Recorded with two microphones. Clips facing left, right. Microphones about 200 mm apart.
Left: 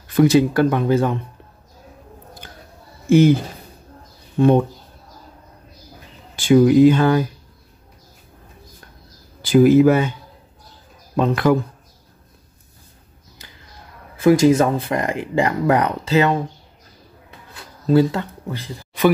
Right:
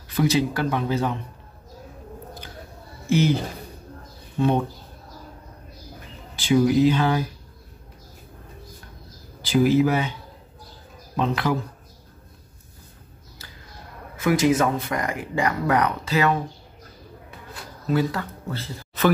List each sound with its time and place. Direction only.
0.1 s speech: 50° left (ahead or behind)
3.1 s speech: 55° left (ahead or behind)
6.3 s speech: 50° left (ahead or behind)
9.4 s speech: 50° left (ahead or behind)
11.1 s speech: 50° left (ahead or behind)
13.4 s a sound: 15° left (ahead or behind)
14.2 s speech: 30° left (ahead or behind)
17.8 s speech: 30° left (ahead or behind)
18.5 s speech: 15° left (ahead or behind)